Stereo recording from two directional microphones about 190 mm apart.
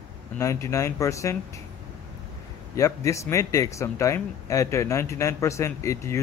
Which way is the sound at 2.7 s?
15° left (ahead or behind).